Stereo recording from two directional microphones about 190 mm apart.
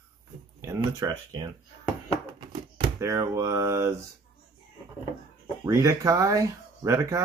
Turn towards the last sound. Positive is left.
turn(degrees=-15)  # may be behind; listen again after turning